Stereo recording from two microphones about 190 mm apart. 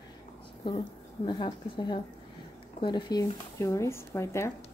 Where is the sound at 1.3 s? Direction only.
25° left (ahead or behind).